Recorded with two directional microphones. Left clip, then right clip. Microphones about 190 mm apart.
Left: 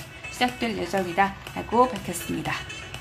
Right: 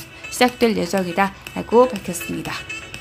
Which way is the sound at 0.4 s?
35° right (ahead or behind).